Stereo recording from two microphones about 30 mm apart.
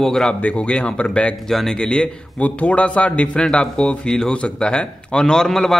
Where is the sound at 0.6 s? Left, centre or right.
Left.